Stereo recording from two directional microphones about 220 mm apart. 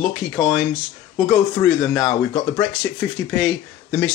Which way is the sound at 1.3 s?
5° left (ahead or behind).